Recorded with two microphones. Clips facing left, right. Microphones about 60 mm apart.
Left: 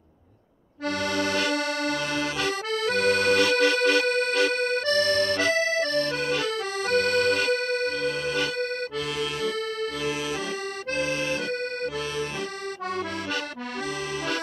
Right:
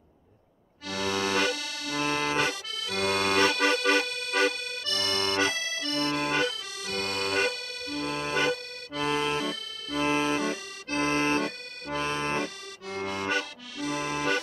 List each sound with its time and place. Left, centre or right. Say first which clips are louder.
0.8 s accordion: left 4 dB; left
1.1 s accordion: right 1 dB; right
1.5 s accordion: left 7 dB; left
2.0 s accordion: even; right
2.7 s accordion: left 10 dB; left
3.1 s accordion: left 2 dB; right
4.6 s accordion: left 11 dB; left
5.0 s accordion: left 4 dB; right
5.5 s accordion: left 9 dB; left
5.9 s accordion: left 3 dB; right
6.8 s accordion: left 10 dB; left
7.1 s accordion: left 6 dB; right
7.5 s music: left 11 dB; left
8.1 s accordion: left 1 dB; right